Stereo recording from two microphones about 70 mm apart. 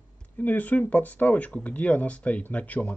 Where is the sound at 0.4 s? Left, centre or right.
Left.